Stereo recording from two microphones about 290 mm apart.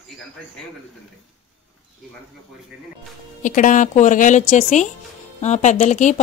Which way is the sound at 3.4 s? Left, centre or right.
Left.